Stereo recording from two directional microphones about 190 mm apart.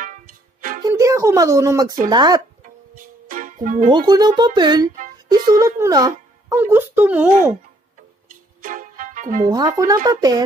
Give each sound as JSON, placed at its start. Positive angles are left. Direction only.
{"t": 0.0, "sound": "music", "side_deg": -45}
{"t": 0.8, "sound": "speech", "side_deg": -15}
{"t": 3.3, "sound": "music", "side_deg": -45}
{"t": 4.1, "sound": "speech", "side_deg": -20}
{"t": 8.3, "sound": "music", "side_deg": -45}
{"t": 9.5, "sound": "speech", "side_deg": -20}